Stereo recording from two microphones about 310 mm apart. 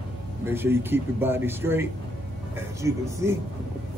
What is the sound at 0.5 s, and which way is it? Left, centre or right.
A man's voice, centre.